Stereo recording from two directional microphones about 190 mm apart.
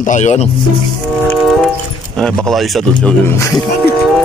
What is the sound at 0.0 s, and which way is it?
Speech, 40° left (ahead or behind).